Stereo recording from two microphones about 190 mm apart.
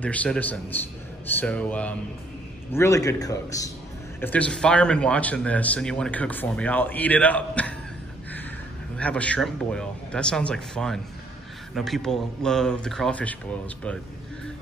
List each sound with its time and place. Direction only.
0.0 s speech: 5° left (ahead or behind)
4.2 s speech: 10° left (ahead or behind)
8.9 s speech: 5° left (ahead or behind)